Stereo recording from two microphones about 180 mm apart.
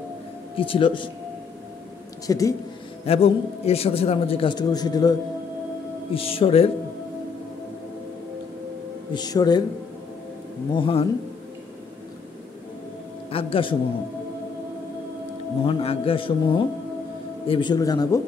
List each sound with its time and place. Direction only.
0.6 s a man's voice: 30° left (ahead or behind)
2.2 s a man's voice: 20° left (ahead or behind)
3.1 s a man's voice: 35° left (ahead or behind)
6.1 s a man's voice: 30° left (ahead or behind)
9.1 s a man's voice: 20° left (ahead or behind)
10.7 s a man's voice: 30° left (ahead or behind)
13.3 s a man's voice: 30° left (ahead or behind)
15.6 s a man's voice: 30° left (ahead or behind)